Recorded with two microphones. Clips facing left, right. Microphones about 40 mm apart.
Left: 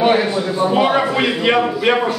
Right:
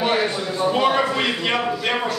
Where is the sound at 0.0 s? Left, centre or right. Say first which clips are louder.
Left 6 dB; centre.